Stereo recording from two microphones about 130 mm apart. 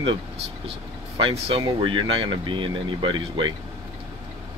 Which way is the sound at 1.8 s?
40° right (ahead or behind).